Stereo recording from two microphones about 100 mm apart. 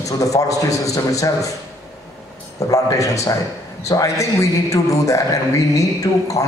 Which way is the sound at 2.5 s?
35° left (ahead or behind).